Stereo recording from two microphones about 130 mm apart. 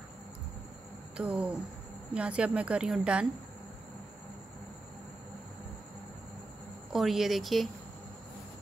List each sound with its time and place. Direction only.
1.1 s speech: 10° right (ahead or behind)
6.9 s speech: centre (ahead or behind)